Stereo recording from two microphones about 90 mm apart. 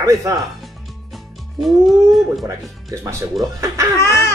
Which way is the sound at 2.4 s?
35° right (ahead or behind).